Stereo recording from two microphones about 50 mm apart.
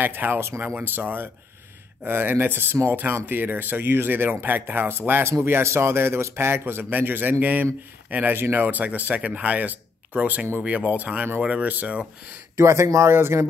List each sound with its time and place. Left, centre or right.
0.0 s speech: right
8.3 s speech: right
8.5 s speech: right
12.5 s speech: right
13.1 s speech: right